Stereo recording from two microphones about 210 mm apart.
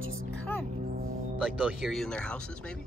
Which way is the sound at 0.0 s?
70° right (ahead or behind).